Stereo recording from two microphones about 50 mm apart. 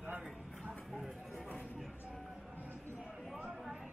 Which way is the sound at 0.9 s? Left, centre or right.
Centre.